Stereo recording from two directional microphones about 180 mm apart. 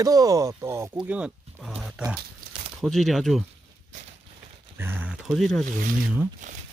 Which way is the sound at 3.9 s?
45° right (ahead or behind).